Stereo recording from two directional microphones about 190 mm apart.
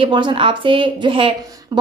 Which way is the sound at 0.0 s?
25° right (ahead or behind).